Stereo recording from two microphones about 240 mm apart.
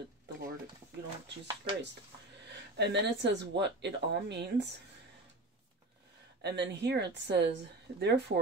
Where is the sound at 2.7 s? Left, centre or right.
Right.